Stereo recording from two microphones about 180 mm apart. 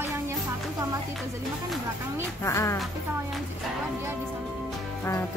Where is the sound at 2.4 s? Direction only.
15° left (ahead or behind).